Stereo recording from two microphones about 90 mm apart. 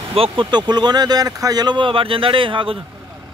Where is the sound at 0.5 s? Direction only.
55° right (ahead or behind); by 2.8 s 75° right (ahead or behind).